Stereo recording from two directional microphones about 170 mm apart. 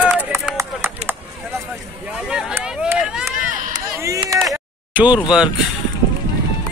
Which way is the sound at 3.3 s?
20° right (ahead or behind).